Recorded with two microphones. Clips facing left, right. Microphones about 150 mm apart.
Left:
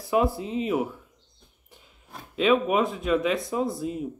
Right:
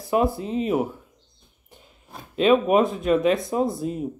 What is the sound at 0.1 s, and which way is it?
Speech, 45° right (ahead or behind).